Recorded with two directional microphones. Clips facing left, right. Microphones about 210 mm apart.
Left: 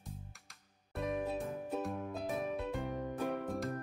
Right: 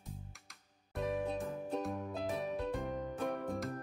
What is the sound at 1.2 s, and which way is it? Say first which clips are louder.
Music: even; 5° left (ahead or behind).